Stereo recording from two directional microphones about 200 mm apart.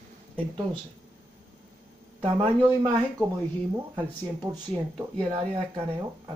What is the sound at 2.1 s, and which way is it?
Speech, 25° right (ahead or behind).